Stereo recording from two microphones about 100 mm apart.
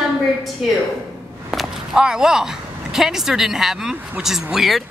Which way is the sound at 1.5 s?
5° right (ahead or behind).